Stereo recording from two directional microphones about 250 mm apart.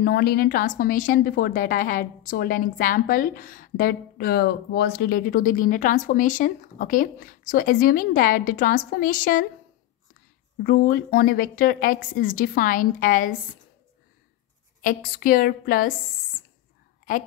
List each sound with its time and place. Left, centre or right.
0.0 s a woman's voice: left
10.6 s a woman's voice: left
14.8 s a woman's voice: left